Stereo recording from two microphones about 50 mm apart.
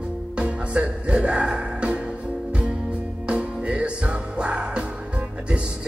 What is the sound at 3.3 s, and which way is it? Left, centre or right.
Music, right.